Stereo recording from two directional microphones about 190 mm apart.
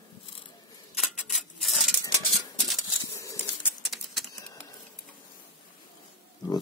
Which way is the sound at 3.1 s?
15° left (ahead or behind).